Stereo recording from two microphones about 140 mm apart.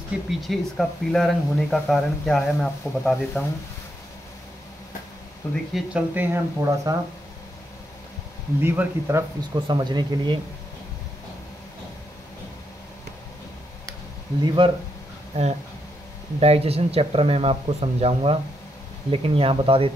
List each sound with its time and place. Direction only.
0.3 s speech: centre (ahead or behind)
5.4 s speech: 15° left (ahead or behind)
5.8 s speech: 10° right (ahead or behind)
8.5 s speech: 15° right (ahead or behind)
9.7 s speech: 30° right (ahead or behind)
14.4 s speech: 30° right (ahead or behind)
15.3 s speech: 50° right (ahead or behind)